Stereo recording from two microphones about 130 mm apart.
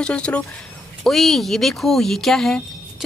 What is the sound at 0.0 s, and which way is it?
Speech, 10° left (ahead or behind).